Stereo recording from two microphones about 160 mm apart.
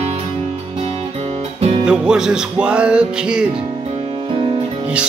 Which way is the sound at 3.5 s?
40° right (ahead or behind).